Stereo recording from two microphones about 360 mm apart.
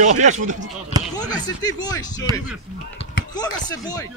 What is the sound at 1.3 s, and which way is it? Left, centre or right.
Speech, centre.